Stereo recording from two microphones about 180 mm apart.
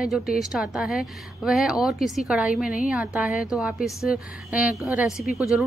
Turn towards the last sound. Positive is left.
turn(degrees=0)  # may be behind; listen again after turning